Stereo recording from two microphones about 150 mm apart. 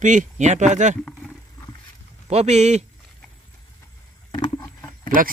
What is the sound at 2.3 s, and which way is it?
Speech, 50° right (ahead or behind).